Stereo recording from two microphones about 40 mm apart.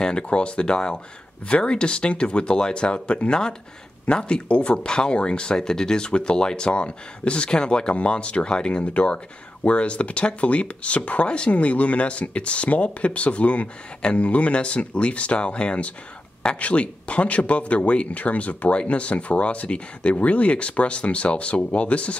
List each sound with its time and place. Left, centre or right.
0.0 s speech: left